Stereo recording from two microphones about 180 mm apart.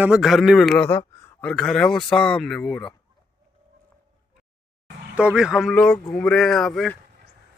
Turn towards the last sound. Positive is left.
turn(degrees=0)  # may be behind; listen again after turning